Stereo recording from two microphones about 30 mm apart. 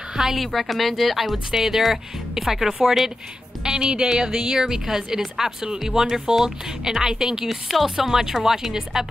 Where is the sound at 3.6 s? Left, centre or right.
Right.